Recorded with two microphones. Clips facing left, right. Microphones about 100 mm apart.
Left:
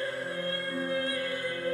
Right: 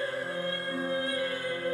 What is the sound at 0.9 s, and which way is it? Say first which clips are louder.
Music: even; 25° right (ahead or behind).